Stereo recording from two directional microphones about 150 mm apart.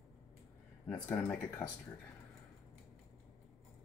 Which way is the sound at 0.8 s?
15° left (ahead or behind).